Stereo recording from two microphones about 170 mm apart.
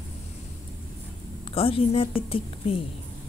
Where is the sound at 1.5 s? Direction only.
35° left (ahead or behind).